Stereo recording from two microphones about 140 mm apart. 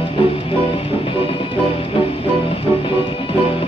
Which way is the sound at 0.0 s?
45° left (ahead or behind).